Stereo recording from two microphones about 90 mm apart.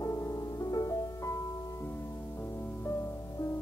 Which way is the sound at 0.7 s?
45° left (ahead or behind).